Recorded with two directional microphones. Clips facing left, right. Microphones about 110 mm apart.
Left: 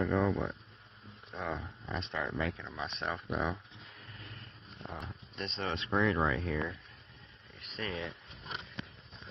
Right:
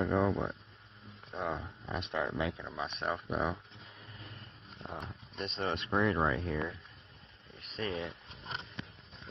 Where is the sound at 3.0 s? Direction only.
Centre (ahead or behind).